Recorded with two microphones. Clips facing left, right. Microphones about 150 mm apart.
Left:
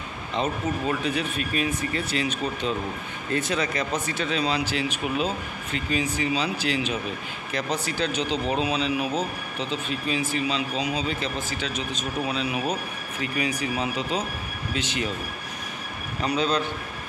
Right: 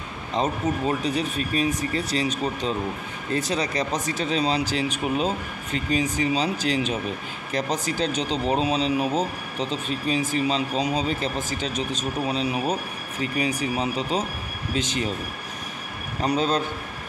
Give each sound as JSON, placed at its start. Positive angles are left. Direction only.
{"t": 0.3, "sound": "speech", "side_deg": -40}
{"t": 16.2, "sound": "a man's voice", "side_deg": -45}